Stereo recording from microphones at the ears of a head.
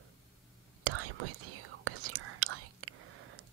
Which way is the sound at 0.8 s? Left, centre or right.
Right.